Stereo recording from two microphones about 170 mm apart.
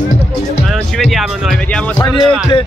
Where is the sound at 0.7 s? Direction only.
Centre (ahead or behind).